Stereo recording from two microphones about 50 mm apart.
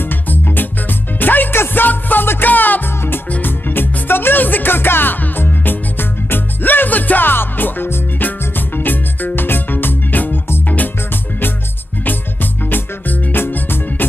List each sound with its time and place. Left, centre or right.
0.0 s music: left
12.6 s music: left